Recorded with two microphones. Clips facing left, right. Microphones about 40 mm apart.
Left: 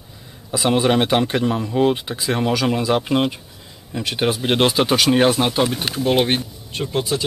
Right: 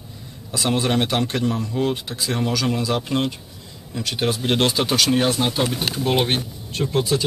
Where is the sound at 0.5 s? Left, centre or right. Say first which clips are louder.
Left 4 dB; centre.